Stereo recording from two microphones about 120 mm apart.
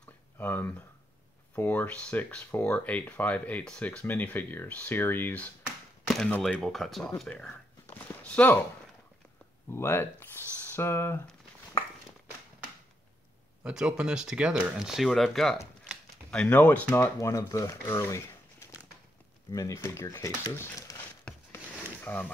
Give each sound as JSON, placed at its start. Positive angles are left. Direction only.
{"t": 0.0, "sound": "a sound", "side_deg": 15}
{"t": 1.5, "sound": "speech", "side_deg": 15}
{"t": 6.0, "sound": "a sound", "side_deg": 0}
{"t": 6.4, "sound": "speech", "side_deg": 5}
{"t": 7.2, "sound": "a sound", "side_deg": 5}
{"t": 9.7, "sound": "speech", "side_deg": 20}
{"t": 13.7, "sound": "speech", "side_deg": -5}
{"t": 19.5, "sound": "speech", "side_deg": 25}
{"t": 22.0, "sound": "speech", "side_deg": 10}